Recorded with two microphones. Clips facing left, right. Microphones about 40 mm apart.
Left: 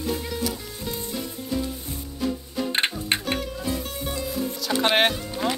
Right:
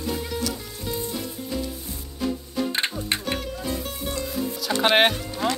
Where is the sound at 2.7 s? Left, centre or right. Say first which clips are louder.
Left 2 dB; left.